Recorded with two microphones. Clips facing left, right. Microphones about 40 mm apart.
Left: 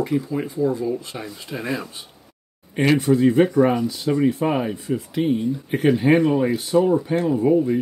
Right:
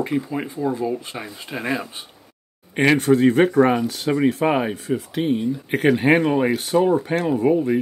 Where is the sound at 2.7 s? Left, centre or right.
Right.